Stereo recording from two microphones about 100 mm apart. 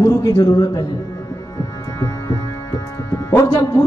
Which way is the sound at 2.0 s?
30° left (ahead or behind).